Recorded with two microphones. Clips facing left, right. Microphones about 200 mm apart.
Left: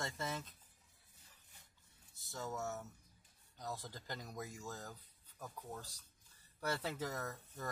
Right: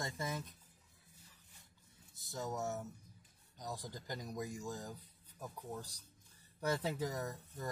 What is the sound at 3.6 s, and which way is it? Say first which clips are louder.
Speech: right 1 dB; 15° right (ahead or behind).